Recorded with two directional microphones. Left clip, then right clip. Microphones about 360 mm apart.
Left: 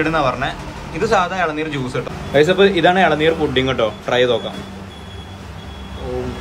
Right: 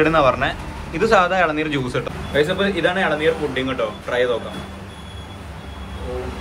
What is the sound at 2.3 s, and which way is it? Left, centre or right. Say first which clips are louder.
Speech: left 6 dB; centre.